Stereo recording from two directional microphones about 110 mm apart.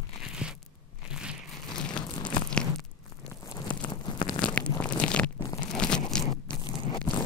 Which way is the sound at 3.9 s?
45° left (ahead or behind).